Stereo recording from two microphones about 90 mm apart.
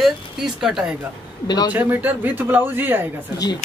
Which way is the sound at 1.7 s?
20° right (ahead or behind).